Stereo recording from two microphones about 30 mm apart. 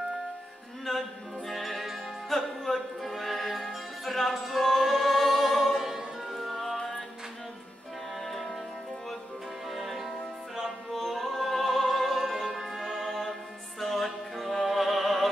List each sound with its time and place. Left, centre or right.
1.5 s music: centre
5.8 s music: centre
6.3 s music: centre
8.3 s music: centre
9.7 s music: centre